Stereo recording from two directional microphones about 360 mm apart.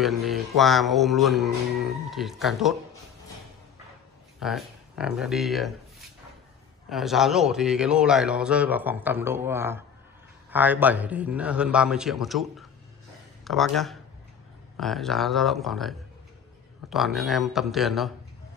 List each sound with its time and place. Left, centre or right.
0.0 s a man's voice: centre
4.4 s a man's voice: centre
16.9 s a man's voice: centre